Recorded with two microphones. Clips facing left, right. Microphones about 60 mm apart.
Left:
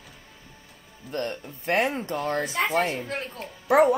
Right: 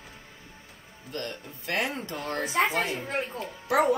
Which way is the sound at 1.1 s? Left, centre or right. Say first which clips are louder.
Left 5 dB; left.